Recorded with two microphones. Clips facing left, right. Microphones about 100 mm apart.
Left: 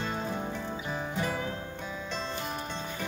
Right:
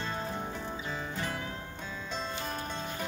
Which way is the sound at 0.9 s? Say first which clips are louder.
Left 5 dB; 15° left (ahead or behind).